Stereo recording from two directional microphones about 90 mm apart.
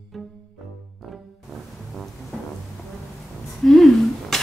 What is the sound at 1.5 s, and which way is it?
Music, centre (ahead or behind).